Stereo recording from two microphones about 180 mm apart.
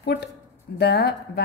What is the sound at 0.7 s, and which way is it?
Speech, 65° left (ahead or behind).